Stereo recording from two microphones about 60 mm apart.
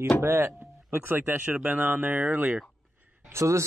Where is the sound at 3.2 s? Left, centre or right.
Right.